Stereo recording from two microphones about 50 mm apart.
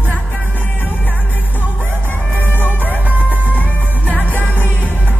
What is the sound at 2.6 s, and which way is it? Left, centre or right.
Music, left.